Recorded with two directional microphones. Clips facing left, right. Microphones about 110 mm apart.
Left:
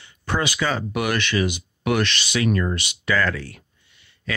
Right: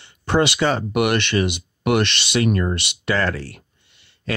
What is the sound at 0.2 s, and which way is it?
Speech, 25° right (ahead or behind).